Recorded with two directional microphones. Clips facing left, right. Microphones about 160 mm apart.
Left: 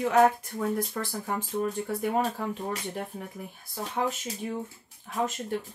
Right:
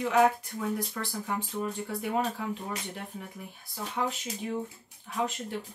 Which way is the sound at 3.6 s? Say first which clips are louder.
Left 2 dB; 45° left (ahead or behind).